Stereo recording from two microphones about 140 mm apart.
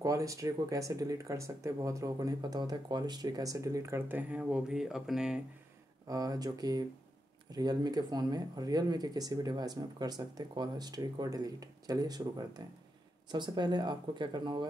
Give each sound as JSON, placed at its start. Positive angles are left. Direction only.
{"t": 0.0, "sound": "speech", "side_deg": -25}
{"t": 6.0, "sound": "speech", "side_deg": -25}